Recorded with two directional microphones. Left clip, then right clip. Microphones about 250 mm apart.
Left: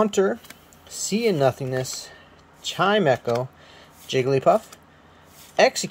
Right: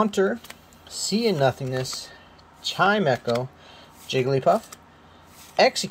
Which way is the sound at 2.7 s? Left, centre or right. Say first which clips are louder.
Left 1 dB; centre.